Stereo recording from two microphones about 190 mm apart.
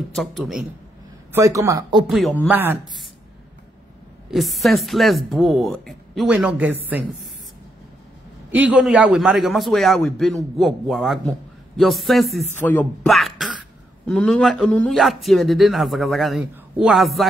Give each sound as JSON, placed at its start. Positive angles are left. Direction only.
{"t": 0.1, "sound": "a man's voice", "side_deg": 0}
{"t": 1.3, "sound": "speech", "side_deg": -15}
{"t": 2.0, "sound": "a man's voice", "side_deg": 0}
{"t": 4.3, "sound": "a man's voice", "side_deg": 0}
{"t": 8.5, "sound": "a man's voice", "side_deg": -5}